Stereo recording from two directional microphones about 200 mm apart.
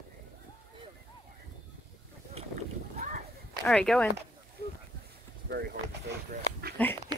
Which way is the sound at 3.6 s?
5° left (ahead or behind).